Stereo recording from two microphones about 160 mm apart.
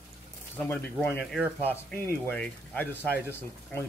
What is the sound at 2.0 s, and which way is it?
Speech, 10° left (ahead or behind).